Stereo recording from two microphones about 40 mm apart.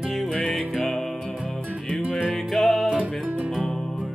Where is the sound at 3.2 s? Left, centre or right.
Right.